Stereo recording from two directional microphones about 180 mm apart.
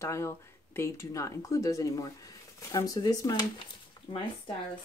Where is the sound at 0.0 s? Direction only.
15° left (ahead or behind).